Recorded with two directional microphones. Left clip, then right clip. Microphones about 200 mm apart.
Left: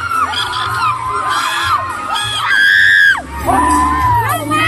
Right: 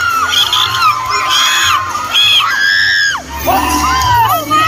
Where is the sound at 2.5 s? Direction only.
55° left (ahead or behind).